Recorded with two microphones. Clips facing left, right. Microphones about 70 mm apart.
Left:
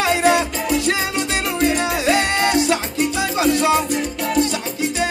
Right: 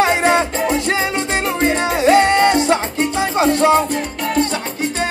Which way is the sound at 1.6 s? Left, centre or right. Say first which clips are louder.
Right 2 dB; right.